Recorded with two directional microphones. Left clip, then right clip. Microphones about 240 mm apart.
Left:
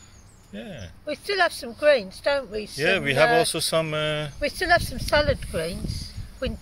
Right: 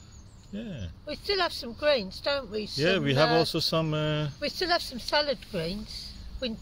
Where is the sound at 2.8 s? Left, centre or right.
Centre.